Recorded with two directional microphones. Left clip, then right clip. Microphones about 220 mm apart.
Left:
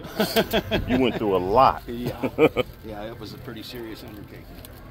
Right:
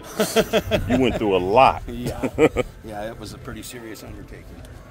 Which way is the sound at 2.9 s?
55° right (ahead or behind).